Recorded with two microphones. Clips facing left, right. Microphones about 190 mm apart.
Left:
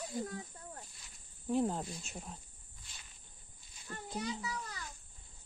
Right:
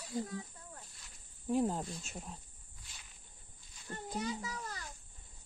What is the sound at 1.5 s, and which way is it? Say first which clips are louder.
Speech: even; 5° right (ahead or behind).